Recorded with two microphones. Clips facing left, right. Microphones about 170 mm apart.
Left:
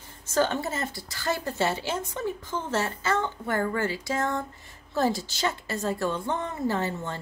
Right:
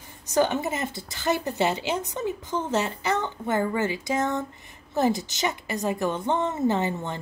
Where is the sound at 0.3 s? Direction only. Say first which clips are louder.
Right 2 dB; 15° right (ahead or behind).